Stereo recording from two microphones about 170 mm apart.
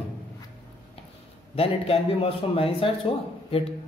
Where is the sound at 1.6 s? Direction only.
35° left (ahead or behind).